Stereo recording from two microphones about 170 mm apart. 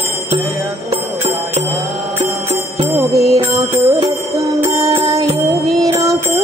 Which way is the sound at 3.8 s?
35° right (ahead or behind).